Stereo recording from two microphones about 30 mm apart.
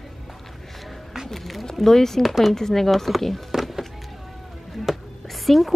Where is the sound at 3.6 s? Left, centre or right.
Centre.